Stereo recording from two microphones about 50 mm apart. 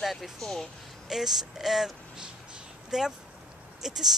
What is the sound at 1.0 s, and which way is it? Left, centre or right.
Speech, centre.